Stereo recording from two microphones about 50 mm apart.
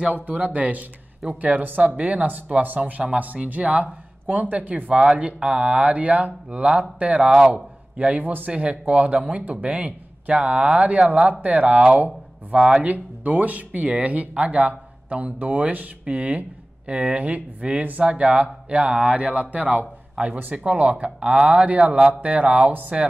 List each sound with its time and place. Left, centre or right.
0.1 s a man's voice: right; by 12.8 s centre
12.8 s speech: right